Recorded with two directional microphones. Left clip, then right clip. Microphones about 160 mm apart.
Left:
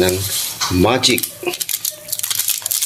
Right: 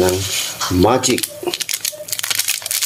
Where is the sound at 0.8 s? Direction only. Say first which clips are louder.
Even; 10° right (ahead or behind).